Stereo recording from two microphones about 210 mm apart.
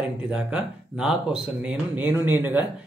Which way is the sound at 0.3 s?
5° right (ahead or behind).